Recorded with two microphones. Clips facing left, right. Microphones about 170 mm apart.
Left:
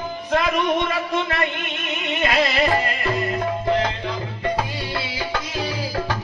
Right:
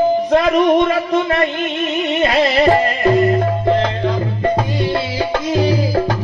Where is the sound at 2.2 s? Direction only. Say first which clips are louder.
Right 6 dB; 35° right (ahead or behind).